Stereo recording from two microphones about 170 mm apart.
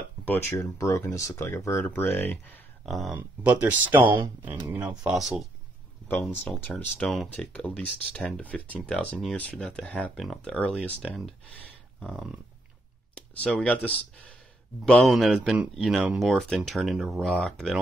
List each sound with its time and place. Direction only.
0.2 s speech: 10° left (ahead or behind)
2.8 s speech: centre (ahead or behind)
12.0 s a sound: centre (ahead or behind)
13.1 s speech: 5° left (ahead or behind)